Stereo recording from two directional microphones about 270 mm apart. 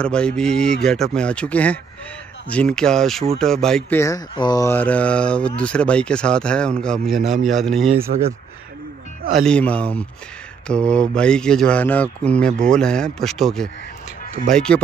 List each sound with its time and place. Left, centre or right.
0.0 s speech: centre
8.1 s speech: right
9.4 s speech: centre